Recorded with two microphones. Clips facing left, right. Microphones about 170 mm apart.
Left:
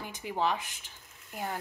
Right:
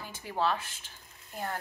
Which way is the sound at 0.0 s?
15° left (ahead or behind).